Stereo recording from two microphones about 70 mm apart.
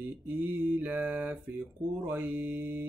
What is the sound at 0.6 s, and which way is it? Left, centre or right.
Mantra, right.